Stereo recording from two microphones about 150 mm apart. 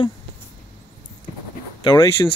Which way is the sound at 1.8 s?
25° left (ahead or behind).